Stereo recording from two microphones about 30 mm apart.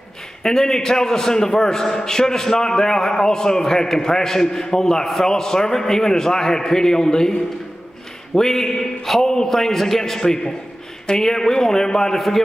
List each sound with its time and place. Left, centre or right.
0.4 s a man's voice: centre
8.4 s a man's voice: centre
9.5 s speech: centre
10.2 s a man's voice: left
12.2 s speech: centre